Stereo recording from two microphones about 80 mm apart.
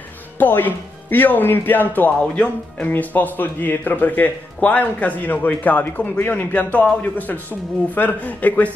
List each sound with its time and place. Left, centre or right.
0.4 s speech: left